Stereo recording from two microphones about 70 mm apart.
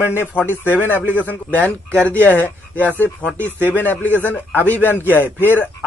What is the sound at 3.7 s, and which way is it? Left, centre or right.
A man's voice, left.